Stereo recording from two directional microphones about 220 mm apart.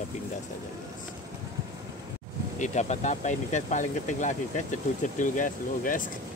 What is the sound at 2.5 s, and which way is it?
Speech, 30° left (ahead or behind).